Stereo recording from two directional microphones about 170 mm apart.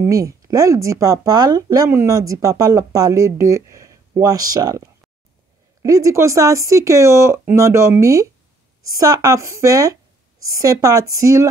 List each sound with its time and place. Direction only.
0.0 s speech: 20° right (ahead or behind)